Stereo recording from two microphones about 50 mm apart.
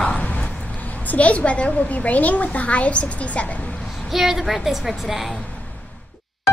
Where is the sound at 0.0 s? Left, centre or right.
Centre.